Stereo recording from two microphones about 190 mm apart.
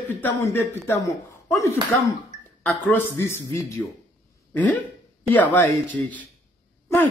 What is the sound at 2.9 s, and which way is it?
Speech, 10° left (ahead or behind).